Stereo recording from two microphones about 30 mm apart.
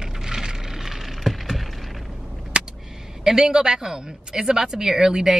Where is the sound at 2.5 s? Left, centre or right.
Right.